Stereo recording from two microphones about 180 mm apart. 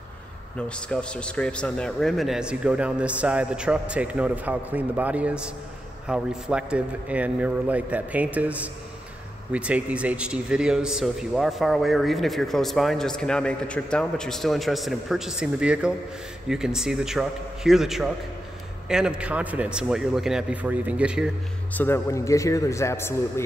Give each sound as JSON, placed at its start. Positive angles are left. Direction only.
{"t": 0.6, "sound": "a man's voice", "side_deg": 5}
{"t": 21.7, "sound": "a man's voice", "side_deg": 10}